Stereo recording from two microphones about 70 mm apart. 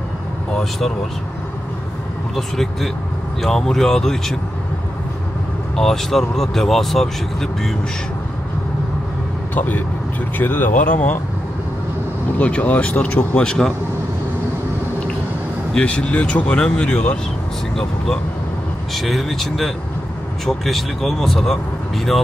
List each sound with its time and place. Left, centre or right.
0.6 s speech: centre
2.3 s speech: centre
5.8 s speech: centre
9.6 s speech: left
12.4 s speech: centre
15.7 s speech: centre